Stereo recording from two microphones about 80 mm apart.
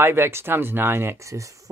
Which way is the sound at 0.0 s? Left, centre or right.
Right.